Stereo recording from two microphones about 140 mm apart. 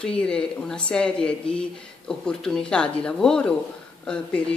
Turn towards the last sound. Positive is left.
turn(degrees=5)  # may be behind; listen again after turning